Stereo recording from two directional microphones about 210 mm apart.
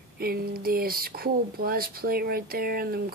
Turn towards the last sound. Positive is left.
turn(degrees=-45)  # may be behind; listen again after turning